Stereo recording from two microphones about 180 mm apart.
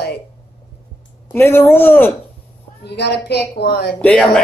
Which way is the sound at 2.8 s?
65° left (ahead or behind).